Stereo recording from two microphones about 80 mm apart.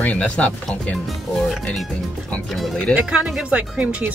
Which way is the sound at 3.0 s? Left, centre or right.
Centre.